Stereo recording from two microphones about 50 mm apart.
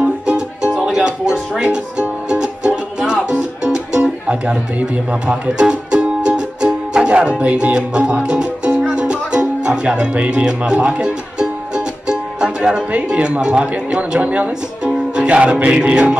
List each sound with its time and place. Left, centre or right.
0.0 s music: centre
0.7 s music: centre
9.6 s speech: centre
15.1 s music: right